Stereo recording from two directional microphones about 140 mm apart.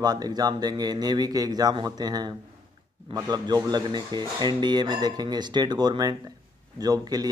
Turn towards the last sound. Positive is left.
turn(degrees=-30)  # may be behind; listen again after turning